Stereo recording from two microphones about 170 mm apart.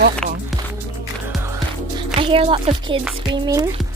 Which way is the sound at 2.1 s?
35° right (ahead or behind).